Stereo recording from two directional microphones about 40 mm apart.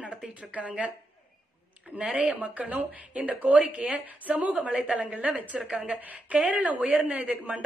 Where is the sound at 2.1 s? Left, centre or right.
Right.